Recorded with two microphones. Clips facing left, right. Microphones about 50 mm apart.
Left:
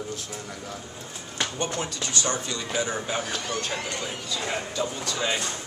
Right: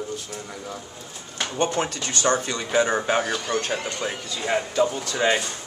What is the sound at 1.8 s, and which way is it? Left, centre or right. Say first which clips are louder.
Speech: right 5 dB; right.